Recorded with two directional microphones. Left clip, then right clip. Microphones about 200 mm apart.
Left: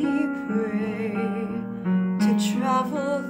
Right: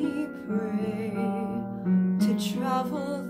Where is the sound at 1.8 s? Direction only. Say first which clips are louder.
Left 1 dB; 25° left (ahead or behind).